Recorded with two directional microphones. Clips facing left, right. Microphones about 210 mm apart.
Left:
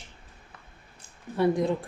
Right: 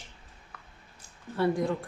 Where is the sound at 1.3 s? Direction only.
20° left (ahead or behind).